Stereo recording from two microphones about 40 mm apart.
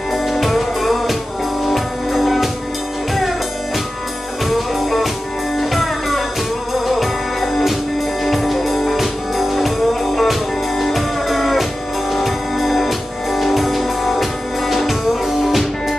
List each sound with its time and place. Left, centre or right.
0.1 s music: centre
4.5 s music: centre